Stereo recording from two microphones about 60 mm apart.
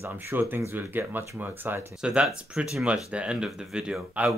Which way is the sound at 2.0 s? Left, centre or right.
Centre.